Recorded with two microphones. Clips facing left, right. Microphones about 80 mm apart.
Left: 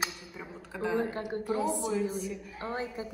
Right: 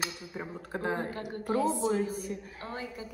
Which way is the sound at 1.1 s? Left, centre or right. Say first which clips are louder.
Right 1 dB; left.